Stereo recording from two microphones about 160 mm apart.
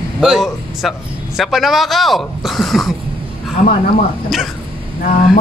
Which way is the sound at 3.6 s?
50° left (ahead or behind).